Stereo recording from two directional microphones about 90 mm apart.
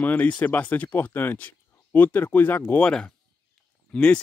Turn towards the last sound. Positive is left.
turn(degrees=15)  # may be behind; listen again after turning